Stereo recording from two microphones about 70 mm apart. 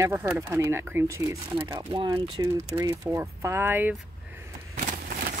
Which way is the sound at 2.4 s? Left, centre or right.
Right.